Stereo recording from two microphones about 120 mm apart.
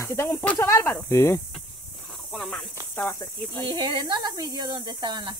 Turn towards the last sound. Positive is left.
turn(degrees=-40)  # may be behind; listen again after turning